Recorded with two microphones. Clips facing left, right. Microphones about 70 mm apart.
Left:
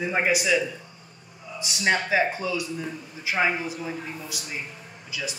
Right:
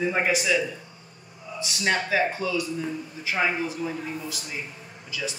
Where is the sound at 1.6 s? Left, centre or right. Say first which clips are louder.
Left 2 dB; centre.